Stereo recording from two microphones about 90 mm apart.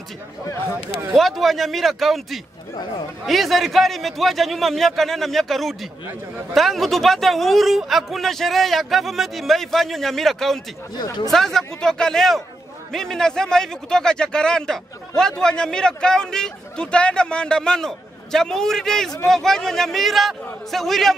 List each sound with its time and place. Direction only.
1.1 s speech: centre (ahead or behind)
11.0 s speech: 50° left (ahead or behind)
11.2 s a man's voice: 5° left (ahead or behind)